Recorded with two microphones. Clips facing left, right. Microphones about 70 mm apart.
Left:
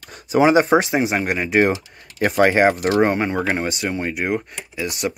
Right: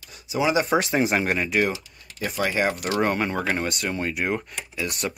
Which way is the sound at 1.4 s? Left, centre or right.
Left.